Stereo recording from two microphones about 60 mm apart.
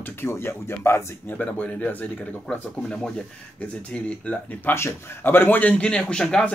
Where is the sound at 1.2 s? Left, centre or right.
Left.